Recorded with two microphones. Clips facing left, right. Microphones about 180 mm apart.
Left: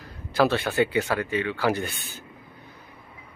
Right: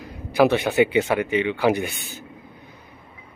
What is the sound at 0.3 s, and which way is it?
Speech, 15° right (ahead or behind).